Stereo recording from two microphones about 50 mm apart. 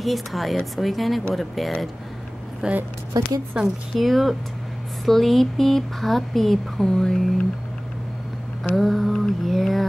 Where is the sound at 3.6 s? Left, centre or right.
Centre.